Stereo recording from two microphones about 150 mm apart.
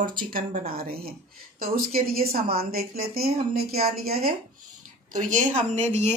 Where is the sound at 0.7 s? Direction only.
90° right.